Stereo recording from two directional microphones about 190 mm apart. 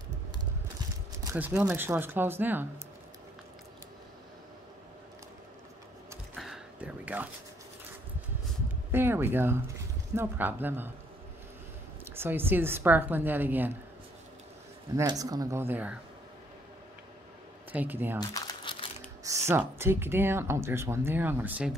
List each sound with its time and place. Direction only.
1.2 s speech: 15° right (ahead or behind)
6.3 s a sound: centre (ahead or behind)
8.9 s speech: 10° right (ahead or behind)
12.0 s speech: 10° right (ahead or behind)
15.0 s speech: 20° right (ahead or behind)
17.7 s speech: 10° right (ahead or behind)
18.3 s crumpling: 20° left (ahead or behind)
19.2 s speech: 15° right (ahead or behind)